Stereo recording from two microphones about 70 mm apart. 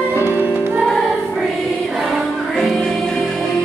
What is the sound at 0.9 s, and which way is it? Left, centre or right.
Music, centre.